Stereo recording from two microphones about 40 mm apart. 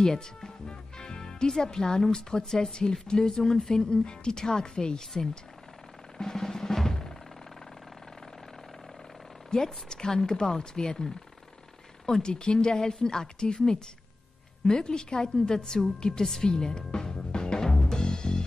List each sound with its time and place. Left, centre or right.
0.0 s music: centre
1.5 s a woman's voice: centre
6.1 s drum: centre
9.5 s a woman's voice: centre
16.3 s music: centre